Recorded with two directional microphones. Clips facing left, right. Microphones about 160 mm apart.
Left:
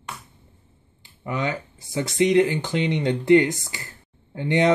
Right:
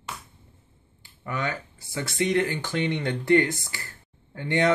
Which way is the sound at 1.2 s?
20° left (ahead or behind).